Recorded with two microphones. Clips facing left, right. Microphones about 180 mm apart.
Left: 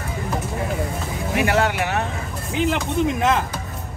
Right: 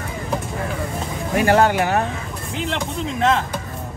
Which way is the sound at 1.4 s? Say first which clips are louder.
Right 4 dB; 40° right (ahead or behind).